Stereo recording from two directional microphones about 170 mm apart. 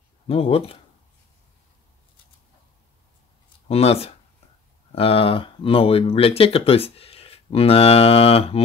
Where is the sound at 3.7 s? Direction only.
35° left (ahead or behind).